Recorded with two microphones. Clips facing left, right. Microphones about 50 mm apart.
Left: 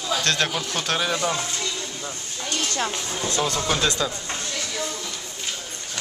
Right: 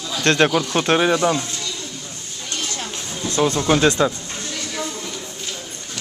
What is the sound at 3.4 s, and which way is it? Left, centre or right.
Speech, right.